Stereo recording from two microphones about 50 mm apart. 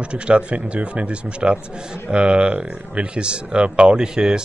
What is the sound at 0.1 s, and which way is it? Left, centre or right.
A man's voice, right.